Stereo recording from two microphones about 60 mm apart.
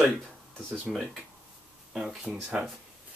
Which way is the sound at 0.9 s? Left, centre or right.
Centre.